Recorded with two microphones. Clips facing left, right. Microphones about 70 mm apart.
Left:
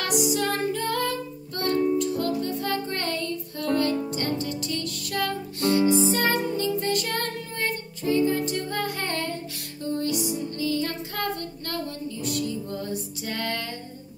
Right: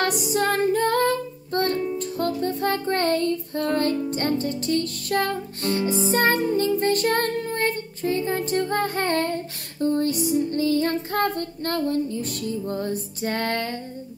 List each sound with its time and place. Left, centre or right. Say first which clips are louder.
0.0 s music: right 2 dB; right